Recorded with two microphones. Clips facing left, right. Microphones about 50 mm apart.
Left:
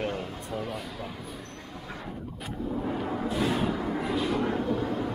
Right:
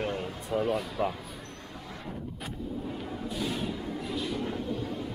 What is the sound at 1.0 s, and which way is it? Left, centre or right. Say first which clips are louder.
Speech: right 9 dB; right.